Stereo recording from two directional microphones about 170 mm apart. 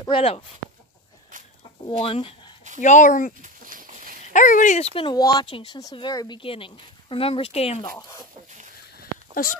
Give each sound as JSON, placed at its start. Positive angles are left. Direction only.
{"t": 0.0, "sound": "speech", "side_deg": 35}
{"t": 1.9, "sound": "speech", "side_deg": 35}
{"t": 2.8, "sound": "speech", "side_deg": 50}
{"t": 3.4, "sound": "a sound", "side_deg": -50}
{"t": 4.3, "sound": "speech", "side_deg": 45}
{"t": 4.9, "sound": "a woman's voice", "side_deg": 25}